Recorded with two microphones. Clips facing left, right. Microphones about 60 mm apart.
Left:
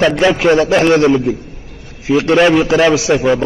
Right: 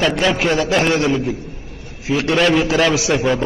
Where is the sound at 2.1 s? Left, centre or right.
Left.